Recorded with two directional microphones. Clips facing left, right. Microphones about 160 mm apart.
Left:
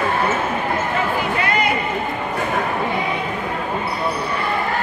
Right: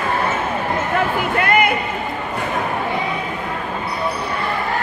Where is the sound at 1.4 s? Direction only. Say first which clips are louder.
Right 7 dB; 55° right (ahead or behind).